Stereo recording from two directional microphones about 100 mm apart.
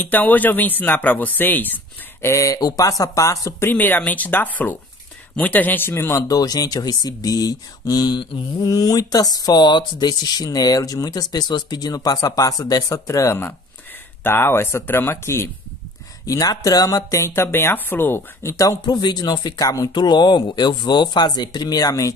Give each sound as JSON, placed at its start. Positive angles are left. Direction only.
{"t": 0.0, "sound": "speech", "side_deg": 15}
{"t": 2.2, "sound": "speech", "side_deg": 30}
{"t": 3.6, "sound": "speech", "side_deg": 20}
{"t": 16.3, "sound": "speech", "side_deg": 35}
{"t": 17.3, "sound": "speech", "side_deg": 20}